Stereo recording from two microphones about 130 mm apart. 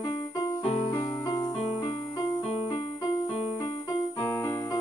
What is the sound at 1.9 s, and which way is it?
Music, 45° left (ahead or behind).